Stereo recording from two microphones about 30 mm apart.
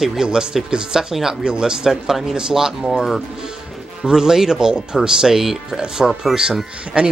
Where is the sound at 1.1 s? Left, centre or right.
Centre.